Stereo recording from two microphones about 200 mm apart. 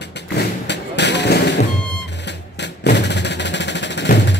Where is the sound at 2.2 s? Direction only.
60° left (ahead or behind).